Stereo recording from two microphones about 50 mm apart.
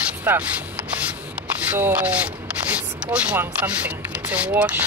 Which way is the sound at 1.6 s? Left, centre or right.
Right.